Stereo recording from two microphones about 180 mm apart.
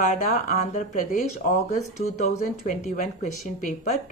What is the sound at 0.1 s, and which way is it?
Speech, 45° left (ahead or behind).